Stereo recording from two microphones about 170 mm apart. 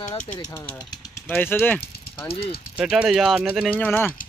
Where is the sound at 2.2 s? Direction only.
35° left (ahead or behind).